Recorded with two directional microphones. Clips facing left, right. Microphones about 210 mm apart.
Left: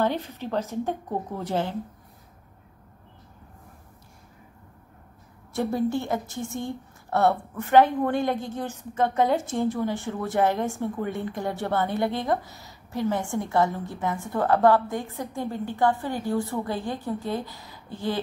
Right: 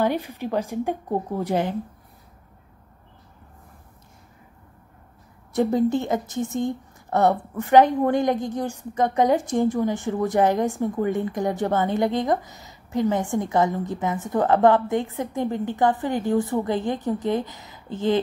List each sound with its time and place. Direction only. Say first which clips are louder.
0.0 s a woman's voice: right 3 dB; 10° right (ahead or behind)
5.5 s a woman's voice: right 5 dB; 20° right (ahead or behind)